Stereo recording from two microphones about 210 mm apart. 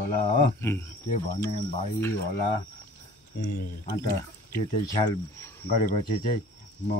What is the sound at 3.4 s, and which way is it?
Speech, 45° left (ahead or behind).